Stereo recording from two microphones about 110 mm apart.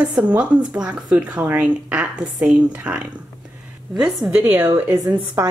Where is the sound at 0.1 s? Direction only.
10° right (ahead or behind).